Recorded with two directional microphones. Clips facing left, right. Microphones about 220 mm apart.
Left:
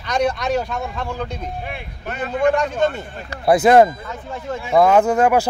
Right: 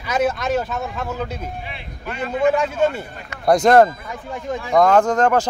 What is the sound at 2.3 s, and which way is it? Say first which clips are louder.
Speech: even; 5° right (ahead or behind).